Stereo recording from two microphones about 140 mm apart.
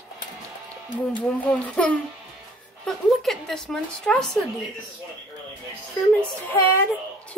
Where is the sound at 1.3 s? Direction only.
10° left (ahead or behind).